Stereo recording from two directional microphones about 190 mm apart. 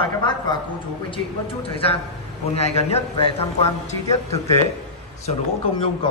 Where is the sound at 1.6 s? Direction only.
30° left (ahead or behind).